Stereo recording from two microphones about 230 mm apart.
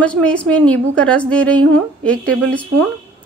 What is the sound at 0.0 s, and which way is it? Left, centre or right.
Speech, centre.